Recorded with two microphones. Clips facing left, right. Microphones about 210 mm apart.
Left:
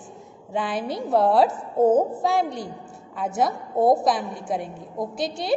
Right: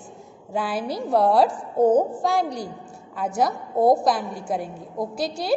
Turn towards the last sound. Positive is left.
turn(degrees=0)  # may be behind; listen again after turning